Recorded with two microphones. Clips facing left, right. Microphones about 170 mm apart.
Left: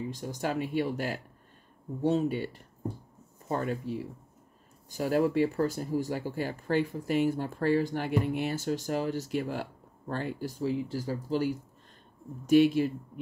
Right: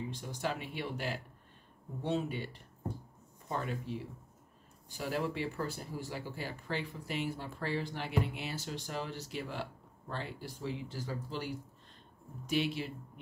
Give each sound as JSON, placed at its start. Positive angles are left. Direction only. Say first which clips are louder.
{"t": 0.1, "sound": "speech", "louder": "left 5 dB", "side_deg": 45}